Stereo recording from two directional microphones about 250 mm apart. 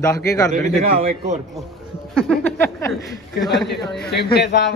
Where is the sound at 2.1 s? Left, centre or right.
Centre.